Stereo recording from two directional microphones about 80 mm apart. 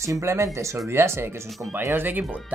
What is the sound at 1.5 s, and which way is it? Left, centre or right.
Speech, centre.